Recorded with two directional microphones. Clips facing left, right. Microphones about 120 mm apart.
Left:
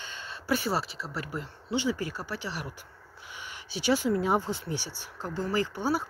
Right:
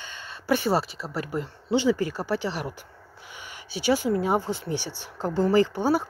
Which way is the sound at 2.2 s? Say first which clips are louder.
Right 8 dB; 90° right.